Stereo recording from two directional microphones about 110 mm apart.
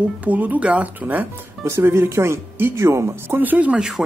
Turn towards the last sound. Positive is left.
turn(degrees=-5)  # may be behind; listen again after turning